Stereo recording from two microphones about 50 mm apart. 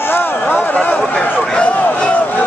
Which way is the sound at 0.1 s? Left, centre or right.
Left.